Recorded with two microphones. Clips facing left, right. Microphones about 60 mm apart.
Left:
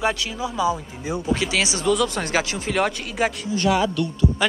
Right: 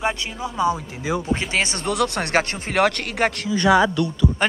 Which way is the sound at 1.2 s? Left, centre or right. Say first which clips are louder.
Left 1 dB; right.